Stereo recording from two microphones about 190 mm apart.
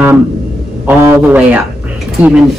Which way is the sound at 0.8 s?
10° right (ahead or behind).